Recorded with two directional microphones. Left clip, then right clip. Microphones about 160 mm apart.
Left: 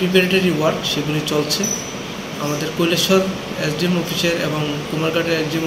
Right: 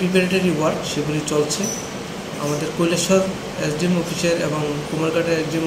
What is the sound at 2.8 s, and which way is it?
A man's voice, 10° right (ahead or behind).